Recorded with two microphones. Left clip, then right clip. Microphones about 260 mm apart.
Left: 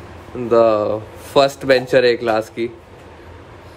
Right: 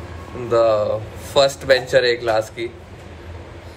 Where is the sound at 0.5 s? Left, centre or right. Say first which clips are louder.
Left 2 dB; left.